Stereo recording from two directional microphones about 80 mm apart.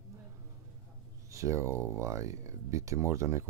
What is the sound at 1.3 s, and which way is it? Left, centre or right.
Speech, right.